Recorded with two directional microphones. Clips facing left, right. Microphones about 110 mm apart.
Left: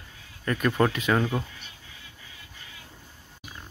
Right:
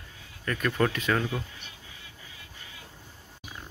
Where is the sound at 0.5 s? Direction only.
20° left (ahead or behind).